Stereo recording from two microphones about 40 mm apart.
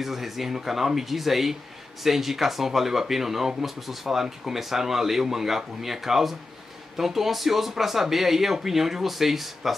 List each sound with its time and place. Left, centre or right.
0.0 s speech: centre